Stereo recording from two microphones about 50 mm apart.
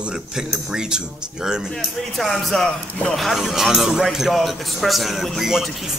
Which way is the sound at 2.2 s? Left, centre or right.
Centre.